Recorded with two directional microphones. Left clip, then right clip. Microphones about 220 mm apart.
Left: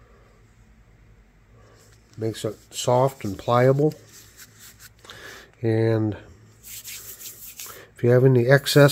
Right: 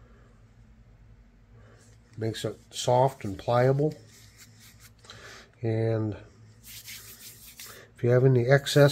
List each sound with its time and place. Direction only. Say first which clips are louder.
2.1 s speech: left 4 dB; 15° left (ahead or behind)
5.0 s a sound: left 5 dB; 30° left (ahead or behind)
7.6 s speech: left 6 dB; 25° left (ahead or behind)